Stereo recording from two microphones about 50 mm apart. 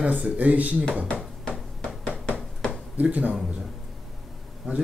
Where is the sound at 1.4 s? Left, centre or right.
Centre.